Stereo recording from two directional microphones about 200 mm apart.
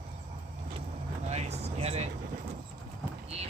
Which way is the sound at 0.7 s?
35° right (ahead or behind).